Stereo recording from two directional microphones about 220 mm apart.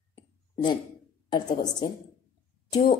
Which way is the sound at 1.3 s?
20° left (ahead or behind).